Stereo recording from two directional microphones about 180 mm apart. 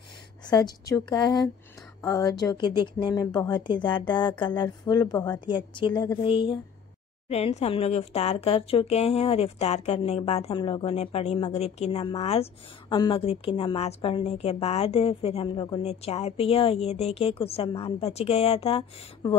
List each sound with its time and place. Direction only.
0.5 s a woman's voice: 20° left (ahead or behind)